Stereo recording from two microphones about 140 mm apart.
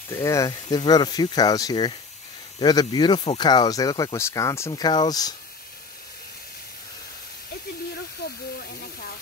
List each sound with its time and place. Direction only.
0.1 s speech: 20° left (ahead or behind)